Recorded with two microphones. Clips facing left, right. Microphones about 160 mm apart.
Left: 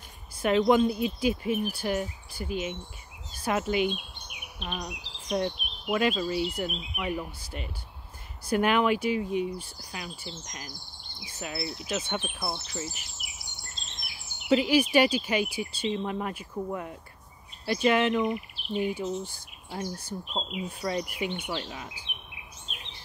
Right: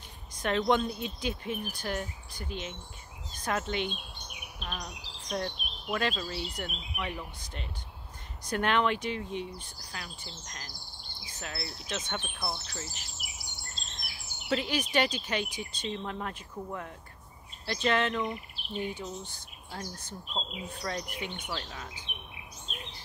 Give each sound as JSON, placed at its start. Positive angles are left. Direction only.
{"t": 0.4, "sound": "speech", "side_deg": 5}
{"t": 14.5, "sound": "speech", "side_deg": 10}